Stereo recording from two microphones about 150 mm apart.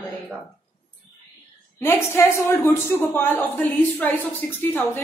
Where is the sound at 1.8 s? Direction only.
15° left (ahead or behind).